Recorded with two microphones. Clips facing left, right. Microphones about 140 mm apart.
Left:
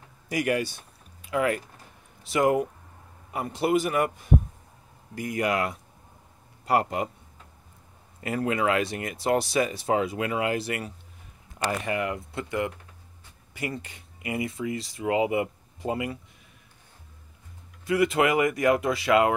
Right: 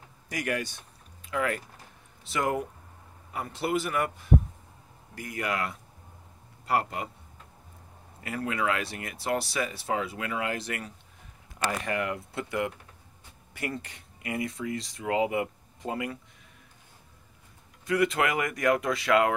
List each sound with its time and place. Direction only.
0.3 s speech: 10° left (ahead or behind)
5.1 s a man's voice: 15° left (ahead or behind)
8.2 s speech: 25° left (ahead or behind)
17.8 s speech: 5° left (ahead or behind)